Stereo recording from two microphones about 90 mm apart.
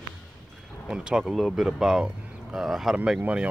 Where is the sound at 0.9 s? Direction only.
5° right (ahead or behind).